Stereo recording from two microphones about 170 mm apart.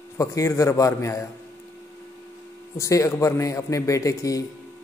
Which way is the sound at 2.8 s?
20° left (ahead or behind).